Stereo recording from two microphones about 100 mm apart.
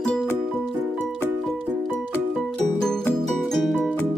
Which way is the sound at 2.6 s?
5° left (ahead or behind).